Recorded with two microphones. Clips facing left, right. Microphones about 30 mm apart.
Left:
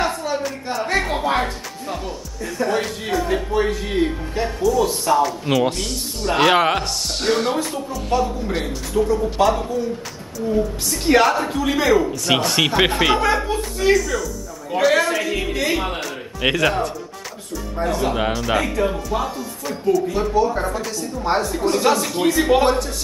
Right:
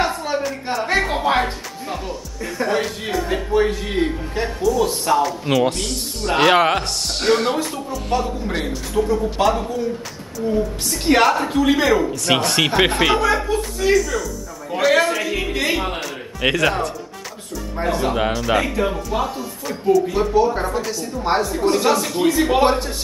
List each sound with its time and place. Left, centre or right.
0.0 s a sound: centre
0.8 s a woman's voice: centre
17.7 s speech: right
18.0 s a woman's voice: centre
22.6 s speech: right